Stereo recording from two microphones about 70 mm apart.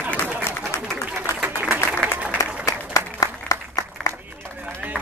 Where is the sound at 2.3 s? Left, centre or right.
Left.